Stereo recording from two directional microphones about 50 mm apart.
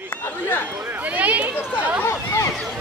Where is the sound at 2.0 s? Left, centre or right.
Left.